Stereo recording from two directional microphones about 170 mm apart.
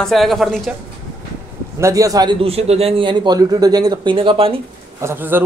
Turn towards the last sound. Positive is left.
turn(degrees=-15)  # may be behind; listen again after turning